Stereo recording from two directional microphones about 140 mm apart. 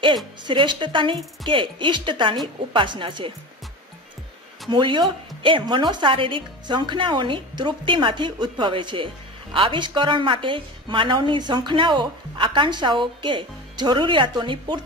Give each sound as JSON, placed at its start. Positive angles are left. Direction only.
{"t": 0.5, "sound": "speech", "side_deg": -35}
{"t": 4.6, "sound": "speech", "side_deg": -35}